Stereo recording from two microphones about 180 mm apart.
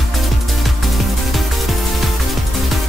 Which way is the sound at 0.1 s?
Centre (ahead or behind).